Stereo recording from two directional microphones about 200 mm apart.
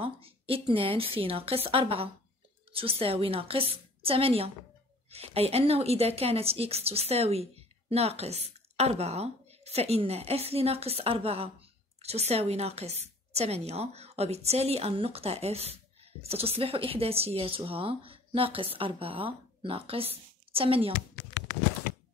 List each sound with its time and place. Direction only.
0.0 s a woman's voice: 25° right (ahead or behind)